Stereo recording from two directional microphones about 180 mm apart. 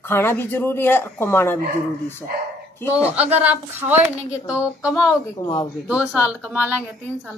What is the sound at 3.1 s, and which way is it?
Speech, 35° right (ahead or behind).